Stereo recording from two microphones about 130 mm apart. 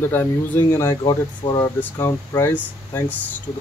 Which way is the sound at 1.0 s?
30° left (ahead or behind).